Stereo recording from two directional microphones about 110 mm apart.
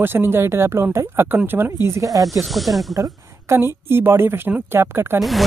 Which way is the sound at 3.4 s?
20° right (ahead or behind).